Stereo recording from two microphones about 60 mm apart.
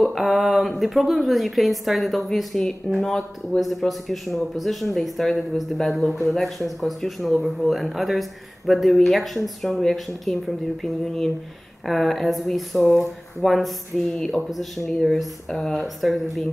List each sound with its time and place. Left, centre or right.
0.0 s speech: centre